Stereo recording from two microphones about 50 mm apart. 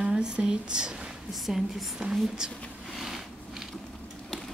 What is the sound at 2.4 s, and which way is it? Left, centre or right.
Speech, centre.